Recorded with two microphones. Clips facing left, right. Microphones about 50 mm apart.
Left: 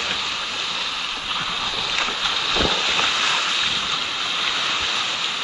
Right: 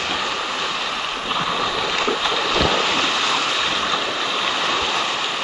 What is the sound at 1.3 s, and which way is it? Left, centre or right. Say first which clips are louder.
Boat: right 6 dB; right.